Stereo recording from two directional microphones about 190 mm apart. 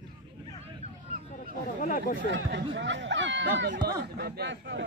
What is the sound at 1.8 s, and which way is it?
Speech, 50° left (ahead or behind).